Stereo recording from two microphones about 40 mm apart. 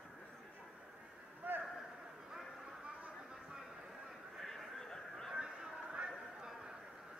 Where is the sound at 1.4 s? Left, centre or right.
Right.